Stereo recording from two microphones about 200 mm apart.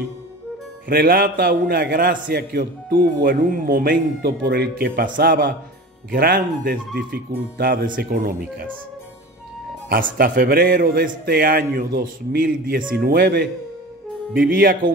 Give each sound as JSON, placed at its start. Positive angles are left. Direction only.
{"t": 0.8, "sound": "a man's voice", "side_deg": -45}
{"t": 9.8, "sound": "a man's voice", "side_deg": -45}